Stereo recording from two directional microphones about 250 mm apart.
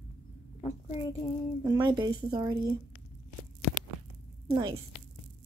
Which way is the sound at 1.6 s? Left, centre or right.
Centre.